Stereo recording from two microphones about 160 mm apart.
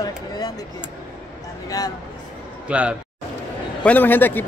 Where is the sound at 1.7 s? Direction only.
25° left (ahead or behind).